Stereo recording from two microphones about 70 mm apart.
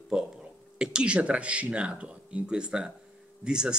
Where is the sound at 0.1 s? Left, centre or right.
Centre.